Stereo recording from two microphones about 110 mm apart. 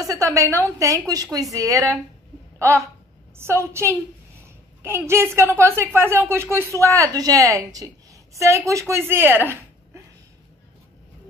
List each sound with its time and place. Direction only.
0.0 s a woman's voice: 30° right (ahead or behind)